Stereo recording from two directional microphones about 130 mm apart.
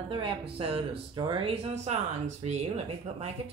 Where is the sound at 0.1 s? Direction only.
40° right (ahead or behind); by 3.3 s 60° right (ahead or behind).